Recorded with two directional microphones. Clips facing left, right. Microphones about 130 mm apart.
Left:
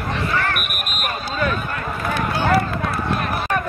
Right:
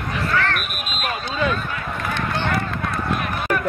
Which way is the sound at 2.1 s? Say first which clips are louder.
Left 5 dB; 10° left (ahead or behind).